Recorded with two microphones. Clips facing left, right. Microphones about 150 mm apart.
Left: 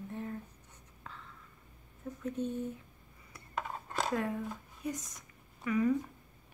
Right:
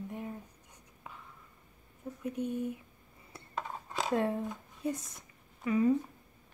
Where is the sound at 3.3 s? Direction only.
30° right (ahead or behind).